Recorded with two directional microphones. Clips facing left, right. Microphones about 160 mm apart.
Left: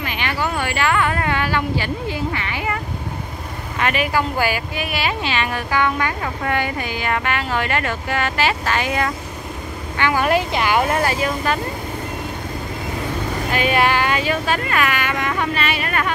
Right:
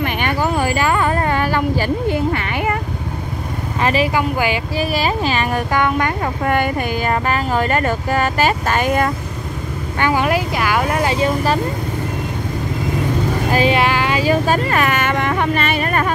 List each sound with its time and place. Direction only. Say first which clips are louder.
0.0 s vehicle: right 5 dB; 50° right (ahead or behind)
3.8 s speech: right 4 dB; 30° right (ahead or behind)
4.1 s speech: right 2 dB; 15° right (ahead or behind)
4.7 s speech: right 5 dB; 40° right (ahead or behind)
10.2 s speech: even; 5° right (ahead or behind)
11.0 s speech: right 3 dB; 25° right (ahead or behind)
13.5 s speech: right 5 dB; 35° right (ahead or behind)
13.7 s speech: right 1 dB; 20° right (ahead or behind)
14.1 s speech: right 5 dB; 35° right (ahead or behind)